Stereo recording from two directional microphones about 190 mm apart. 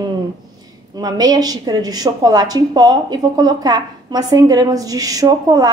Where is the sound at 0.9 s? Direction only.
20° right (ahead or behind).